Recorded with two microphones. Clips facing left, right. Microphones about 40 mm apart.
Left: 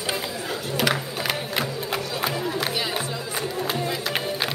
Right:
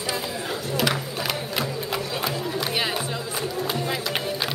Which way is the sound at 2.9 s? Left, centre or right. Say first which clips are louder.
Even; centre.